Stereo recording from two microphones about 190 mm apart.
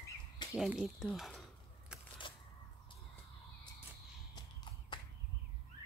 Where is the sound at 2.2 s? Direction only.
25° left (ahead or behind).